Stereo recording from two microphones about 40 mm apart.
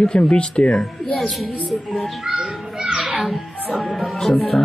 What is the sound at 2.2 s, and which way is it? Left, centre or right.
Children playing, centre.